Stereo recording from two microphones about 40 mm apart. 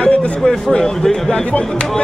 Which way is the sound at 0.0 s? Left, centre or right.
Left.